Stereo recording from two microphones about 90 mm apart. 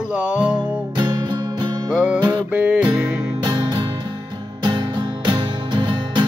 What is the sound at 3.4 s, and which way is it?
Music, 55° right (ahead or behind).